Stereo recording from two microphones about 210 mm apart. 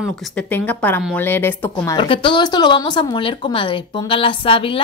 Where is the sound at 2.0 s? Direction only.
25° left (ahead or behind).